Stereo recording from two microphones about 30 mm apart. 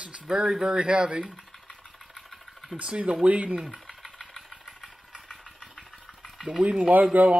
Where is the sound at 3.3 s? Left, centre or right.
Right.